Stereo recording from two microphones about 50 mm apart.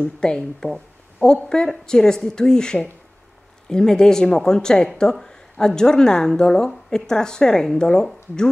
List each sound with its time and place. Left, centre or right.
0.2 s a woman's voice: centre